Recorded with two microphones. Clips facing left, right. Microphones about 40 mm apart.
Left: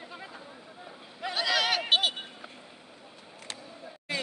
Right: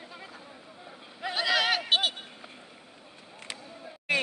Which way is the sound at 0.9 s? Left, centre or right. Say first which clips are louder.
Right 1 dB; centre.